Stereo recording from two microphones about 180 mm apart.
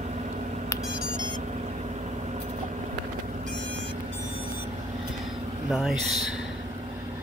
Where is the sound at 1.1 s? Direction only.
25° right (ahead or behind).